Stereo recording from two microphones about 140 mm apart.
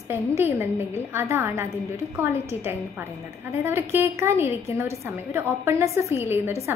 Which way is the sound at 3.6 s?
15° right (ahead or behind).